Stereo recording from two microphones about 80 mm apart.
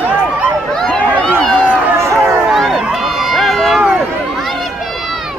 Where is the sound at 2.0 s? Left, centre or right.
Right.